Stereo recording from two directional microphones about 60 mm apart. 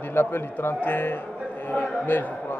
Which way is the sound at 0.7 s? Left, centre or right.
Left.